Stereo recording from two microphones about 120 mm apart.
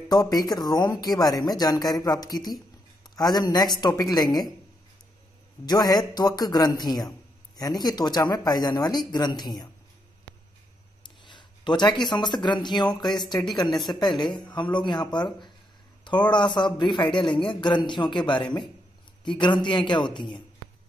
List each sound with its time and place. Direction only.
0.1 s a man's voice: 35° left (ahead or behind)
5.7 s a man's voice: 35° left (ahead or behind)
11.2 s a man's voice: 40° left (ahead or behind)